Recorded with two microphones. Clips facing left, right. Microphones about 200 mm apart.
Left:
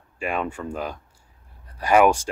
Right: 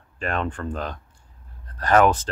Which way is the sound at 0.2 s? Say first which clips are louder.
Even; 10° left (ahead or behind).